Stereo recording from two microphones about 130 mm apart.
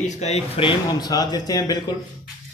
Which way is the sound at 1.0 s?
30° left (ahead or behind).